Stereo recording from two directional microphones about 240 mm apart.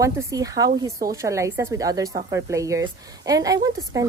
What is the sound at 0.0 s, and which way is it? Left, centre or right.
Speech, centre.